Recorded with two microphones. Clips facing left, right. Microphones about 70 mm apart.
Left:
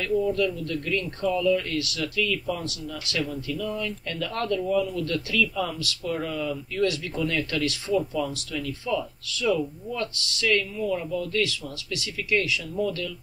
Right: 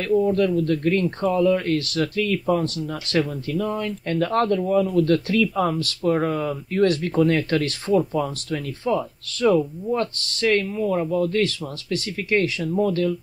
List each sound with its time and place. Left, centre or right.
0.1 s speech: right